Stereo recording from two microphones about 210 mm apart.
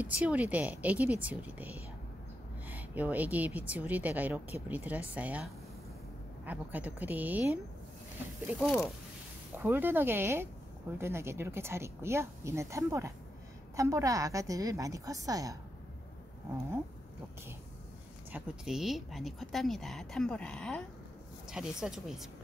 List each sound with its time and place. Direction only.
0.0 s a woman's voice: 5° right (ahead or behind)
8.5 s a woman's voice: 5° left (ahead or behind)
9.6 s a woman's voice: 10° right (ahead or behind)
18.3 s a woman's voice: 5° right (ahead or behind)